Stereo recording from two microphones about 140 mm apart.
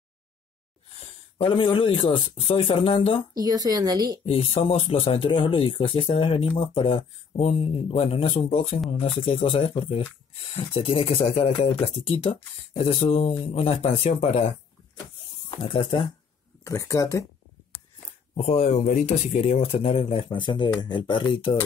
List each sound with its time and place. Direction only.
0.9 s speech: 40° left (ahead or behind)
3.3 s a woman's voice: 25° right (ahead or behind)
4.3 s speech: 45° left (ahead or behind)
15.5 s speech: 40° left (ahead or behind)
16.6 s speech: 25° left (ahead or behind)
18.3 s speech: 50° left (ahead or behind)